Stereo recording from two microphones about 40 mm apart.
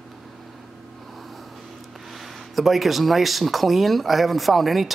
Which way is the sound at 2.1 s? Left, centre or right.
Centre.